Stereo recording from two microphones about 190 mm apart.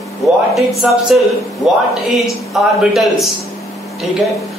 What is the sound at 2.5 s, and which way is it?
Speech, centre (ahead or behind).